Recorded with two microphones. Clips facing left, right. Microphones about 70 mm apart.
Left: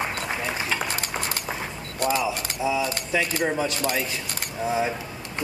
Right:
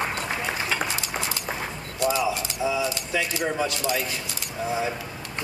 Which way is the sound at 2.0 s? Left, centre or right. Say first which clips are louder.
Even; left.